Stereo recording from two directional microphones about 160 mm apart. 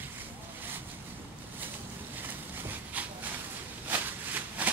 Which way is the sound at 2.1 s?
10° right (ahead or behind).